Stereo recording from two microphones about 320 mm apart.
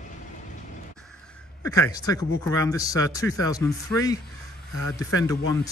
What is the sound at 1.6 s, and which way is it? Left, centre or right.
Speech, centre.